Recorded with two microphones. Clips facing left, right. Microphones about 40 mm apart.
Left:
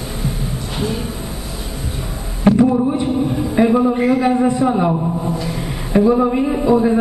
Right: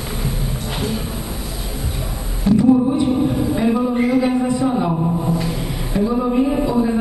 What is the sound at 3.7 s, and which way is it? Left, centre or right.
A man's voice, centre.